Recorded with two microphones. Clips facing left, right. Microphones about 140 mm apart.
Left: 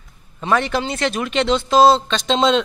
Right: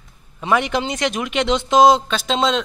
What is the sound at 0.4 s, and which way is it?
A man's voice, 15° right (ahead or behind).